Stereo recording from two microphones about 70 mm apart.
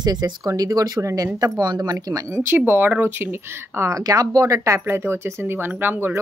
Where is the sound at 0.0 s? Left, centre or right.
Right.